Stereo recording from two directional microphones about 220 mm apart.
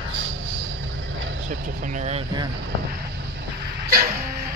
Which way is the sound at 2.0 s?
30° right (ahead or behind).